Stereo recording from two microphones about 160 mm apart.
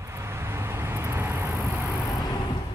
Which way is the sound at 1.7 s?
15° left (ahead or behind).